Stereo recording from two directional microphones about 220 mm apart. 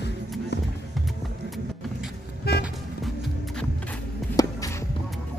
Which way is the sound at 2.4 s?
45° left (ahead or behind).